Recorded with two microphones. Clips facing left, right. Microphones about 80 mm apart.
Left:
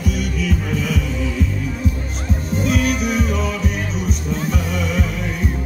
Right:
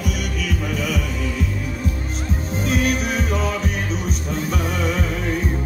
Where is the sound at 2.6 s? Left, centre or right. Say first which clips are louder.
Left 1 dB; right.